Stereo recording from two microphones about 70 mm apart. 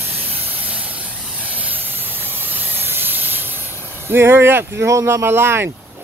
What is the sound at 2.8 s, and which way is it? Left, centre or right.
Steam, right.